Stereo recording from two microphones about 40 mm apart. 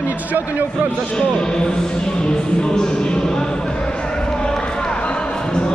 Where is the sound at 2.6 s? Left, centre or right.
Centre.